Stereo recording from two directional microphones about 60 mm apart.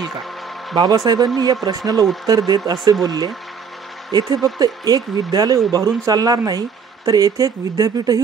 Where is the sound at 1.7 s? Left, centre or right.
Right.